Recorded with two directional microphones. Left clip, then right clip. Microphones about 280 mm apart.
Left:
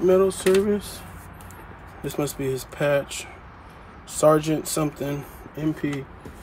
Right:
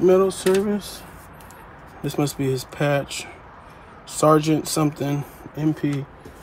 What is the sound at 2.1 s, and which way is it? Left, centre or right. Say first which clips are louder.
Speech: right 3 dB; right.